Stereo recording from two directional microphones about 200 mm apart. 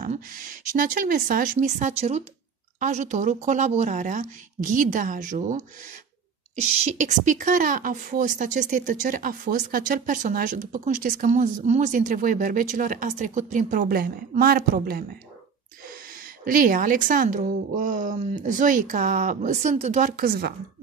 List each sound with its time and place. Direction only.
0.0 s a woman's voice: 45° right (ahead or behind)